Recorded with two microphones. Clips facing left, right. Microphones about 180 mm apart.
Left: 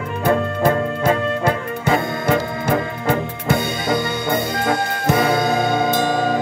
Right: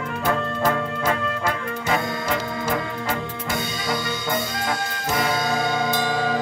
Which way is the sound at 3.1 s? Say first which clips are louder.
Left 10 dB; 55° left (ahead or behind).